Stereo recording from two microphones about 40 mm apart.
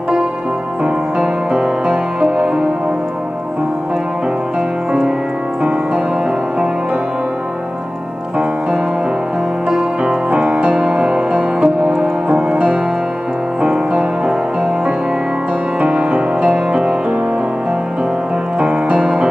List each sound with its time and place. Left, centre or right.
0.8 s music: right
5.6 s music: right
10.0 s piano: right
10.7 s music: centre
18.6 s music: right